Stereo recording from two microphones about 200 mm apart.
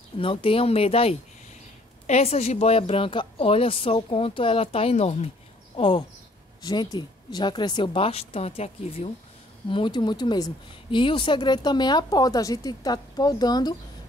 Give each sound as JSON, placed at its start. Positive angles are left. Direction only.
{"t": 0.2, "sound": "speech", "side_deg": 25}